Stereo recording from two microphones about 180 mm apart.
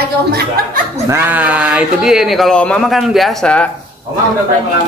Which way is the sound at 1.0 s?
10° right (ahead or behind).